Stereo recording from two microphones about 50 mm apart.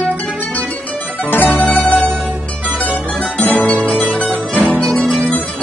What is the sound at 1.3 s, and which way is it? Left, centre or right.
Music, left.